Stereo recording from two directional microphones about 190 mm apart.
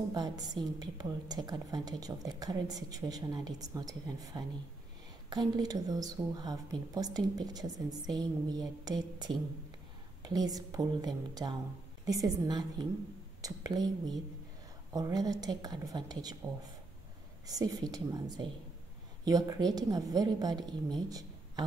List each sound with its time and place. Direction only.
0.1 s a woman's voice: 20° right (ahead or behind)
17.5 s a woman's voice: 20° right (ahead or behind)
21.1 s a sound: 20° right (ahead or behind)